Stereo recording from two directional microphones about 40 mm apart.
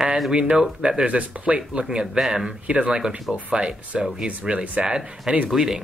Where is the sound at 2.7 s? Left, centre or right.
Right.